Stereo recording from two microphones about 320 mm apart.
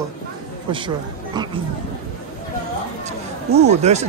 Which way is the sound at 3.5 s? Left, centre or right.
Right.